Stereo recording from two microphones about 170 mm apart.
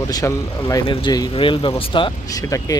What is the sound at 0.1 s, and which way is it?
Speech, 20° left (ahead or behind).